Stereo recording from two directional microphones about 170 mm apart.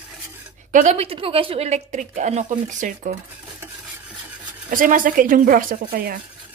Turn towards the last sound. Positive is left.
turn(degrees=-60)  # may be behind; listen again after turning